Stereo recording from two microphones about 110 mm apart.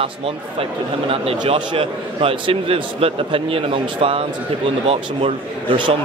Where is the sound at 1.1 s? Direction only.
60° right (ahead or behind).